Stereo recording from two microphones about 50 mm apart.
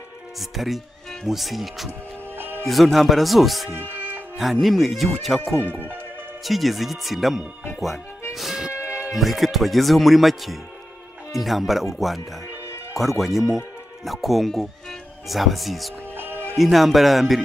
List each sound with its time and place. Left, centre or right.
0.4 s speech: centre
1.9 s music: right
2.6 s speech: centre
5.7 s speech: right
6.4 s speech: centre
8.8 s music: right
9.1 s speech: centre
13.2 s speech: centre